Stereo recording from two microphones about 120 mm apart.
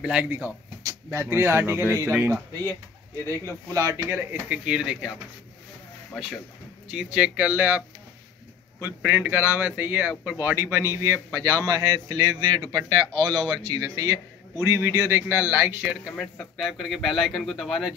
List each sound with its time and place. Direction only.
0.0 s a man's voice: 10° right (ahead or behind)
3.7 s a man's voice: 25° right (ahead or behind); by 5.1 s 5° right (ahead or behind)
6.9 s a man's voice: 5° right (ahead or behind)
8.8 s a man's voice: 15° right (ahead or behind); by 17.9 s centre (ahead or behind)